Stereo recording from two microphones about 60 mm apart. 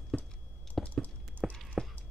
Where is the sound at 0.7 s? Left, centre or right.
Centre.